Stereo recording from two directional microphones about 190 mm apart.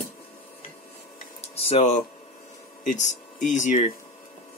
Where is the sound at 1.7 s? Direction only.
35° left (ahead or behind).